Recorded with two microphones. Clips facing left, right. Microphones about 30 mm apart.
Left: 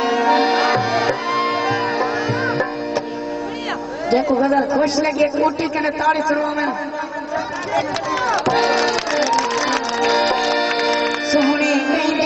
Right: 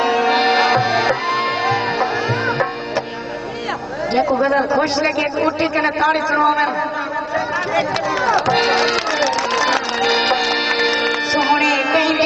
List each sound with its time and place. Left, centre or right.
0.0 s music: right
4.1 s a woman's voice: right
8.5 s music: right
9.5 s speech: right
10.2 s music: right